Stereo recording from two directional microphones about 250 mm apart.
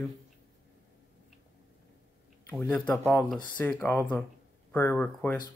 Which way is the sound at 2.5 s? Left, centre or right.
Centre.